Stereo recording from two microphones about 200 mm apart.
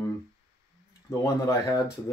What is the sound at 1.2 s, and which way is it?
Speech, 15° left (ahead or behind).